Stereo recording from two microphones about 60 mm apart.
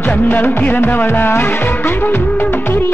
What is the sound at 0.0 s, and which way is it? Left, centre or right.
Music, left.